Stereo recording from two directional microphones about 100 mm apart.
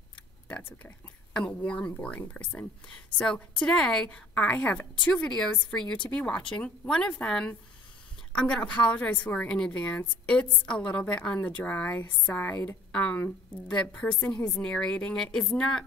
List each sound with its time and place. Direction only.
0.5 s a woman's voice: 15° left (ahead or behind)